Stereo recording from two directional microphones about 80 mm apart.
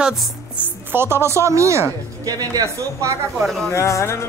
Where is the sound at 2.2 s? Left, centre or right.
Right.